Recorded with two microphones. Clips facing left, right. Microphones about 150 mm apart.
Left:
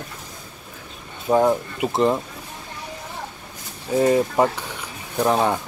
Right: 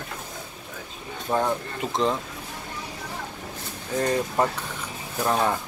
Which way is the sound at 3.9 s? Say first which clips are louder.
Left 6 dB; 5° left (ahead or behind).